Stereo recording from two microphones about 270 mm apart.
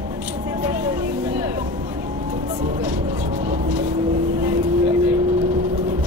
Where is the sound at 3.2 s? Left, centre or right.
Right.